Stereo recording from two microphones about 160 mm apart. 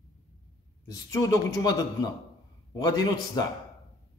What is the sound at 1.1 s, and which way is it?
A man's voice, 20° left (ahead or behind).